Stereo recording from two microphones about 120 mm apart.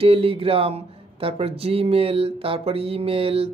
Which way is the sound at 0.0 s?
50° right (ahead or behind).